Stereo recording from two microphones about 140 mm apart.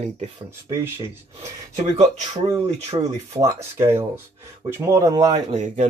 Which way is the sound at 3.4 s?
20° right (ahead or behind).